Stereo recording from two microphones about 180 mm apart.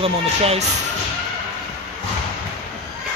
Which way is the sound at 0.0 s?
35° right (ahead or behind).